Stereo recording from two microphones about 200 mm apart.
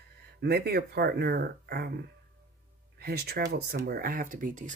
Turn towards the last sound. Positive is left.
turn(degrees=-40)  # may be behind; listen again after turning